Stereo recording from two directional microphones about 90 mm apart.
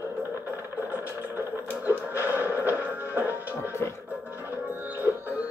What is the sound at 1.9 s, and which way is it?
Music, 20° right (ahead or behind).